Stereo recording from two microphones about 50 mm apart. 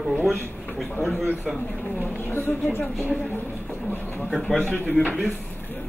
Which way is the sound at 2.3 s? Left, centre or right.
Left.